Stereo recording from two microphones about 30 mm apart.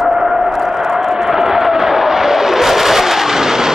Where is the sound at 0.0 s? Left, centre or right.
Centre.